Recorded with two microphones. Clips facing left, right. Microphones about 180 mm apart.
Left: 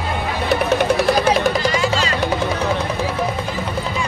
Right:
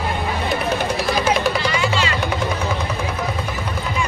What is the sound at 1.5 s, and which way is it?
Music, 40° left (ahead or behind).